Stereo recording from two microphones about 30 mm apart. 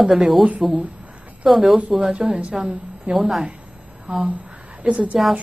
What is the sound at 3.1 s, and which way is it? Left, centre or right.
Speech, right.